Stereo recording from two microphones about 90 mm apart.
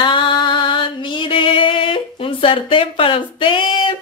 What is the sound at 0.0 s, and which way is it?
Music, 60° left (ahead or behind).